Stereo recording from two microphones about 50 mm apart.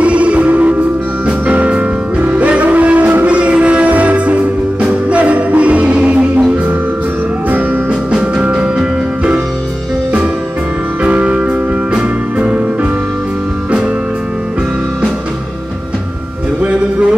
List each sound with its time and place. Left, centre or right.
0.0 s music: right
7.9 s music: centre
11.0 s music: right